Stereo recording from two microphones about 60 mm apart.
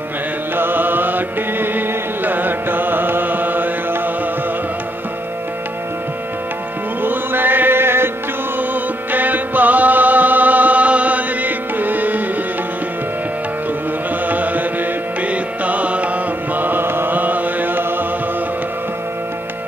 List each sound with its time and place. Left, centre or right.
0.6 s music: right
7.0 s music: right
9.1 s music: right
14.2 s music: right
16.5 s chant: right